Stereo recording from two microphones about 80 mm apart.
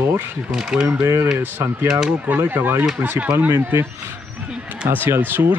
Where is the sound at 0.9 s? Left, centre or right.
Right.